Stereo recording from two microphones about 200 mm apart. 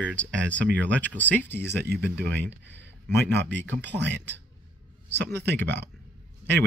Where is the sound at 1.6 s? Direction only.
55° right (ahead or behind).